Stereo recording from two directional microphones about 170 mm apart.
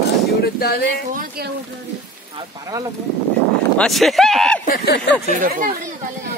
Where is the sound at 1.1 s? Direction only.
65° right (ahead or behind).